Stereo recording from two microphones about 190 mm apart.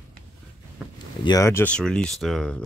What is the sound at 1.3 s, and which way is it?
Speech, 15° left (ahead or behind).